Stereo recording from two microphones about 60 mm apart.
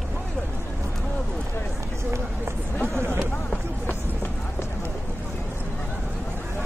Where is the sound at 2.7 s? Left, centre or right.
Left.